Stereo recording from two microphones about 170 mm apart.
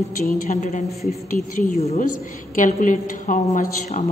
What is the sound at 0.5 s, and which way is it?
Speech, 45° left (ahead or behind).